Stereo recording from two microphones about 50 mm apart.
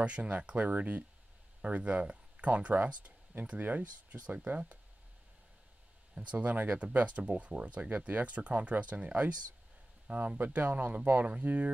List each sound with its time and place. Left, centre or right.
0.0 s speech: right
6.1 s speech: right
11.3 s speech: right